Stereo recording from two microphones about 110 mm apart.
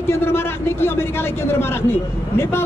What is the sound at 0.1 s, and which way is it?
A man's voice, 20° left (ahead or behind).